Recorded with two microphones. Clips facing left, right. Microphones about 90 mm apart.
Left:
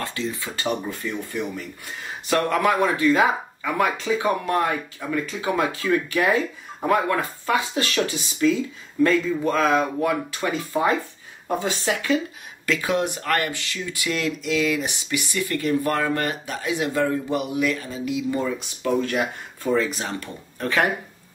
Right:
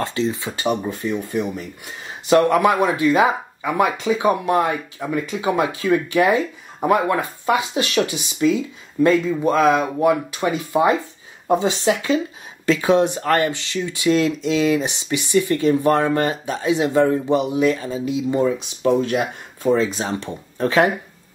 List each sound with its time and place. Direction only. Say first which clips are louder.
0.0 s speech: right 6 dB; 25° right (ahead or behind)